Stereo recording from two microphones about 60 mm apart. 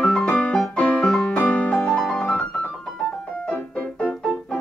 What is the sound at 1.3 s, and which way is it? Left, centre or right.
Piano, left.